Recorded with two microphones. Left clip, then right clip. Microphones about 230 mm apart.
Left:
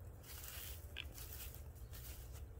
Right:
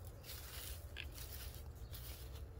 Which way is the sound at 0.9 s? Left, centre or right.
Centre.